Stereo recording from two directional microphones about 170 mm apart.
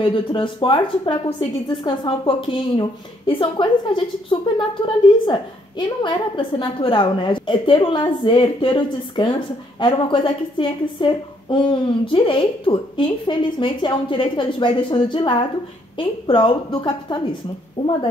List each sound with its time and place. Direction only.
0.0 s a woman's voice: 30° left (ahead or behind)